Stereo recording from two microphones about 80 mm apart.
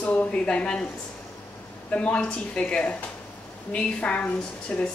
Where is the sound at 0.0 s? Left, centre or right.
Centre.